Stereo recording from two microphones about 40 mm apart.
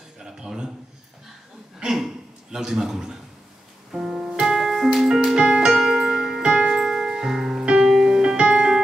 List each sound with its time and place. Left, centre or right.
0.2 s a sound: centre
2.5 s a man's voice: centre
3.9 s music: centre
5.7 s music: centre